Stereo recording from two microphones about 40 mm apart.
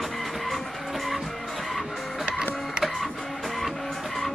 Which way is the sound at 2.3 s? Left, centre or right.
Right.